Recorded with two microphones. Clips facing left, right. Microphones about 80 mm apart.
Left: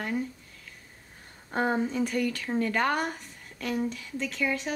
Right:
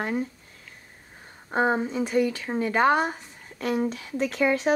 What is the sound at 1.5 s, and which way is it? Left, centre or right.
Speech, right.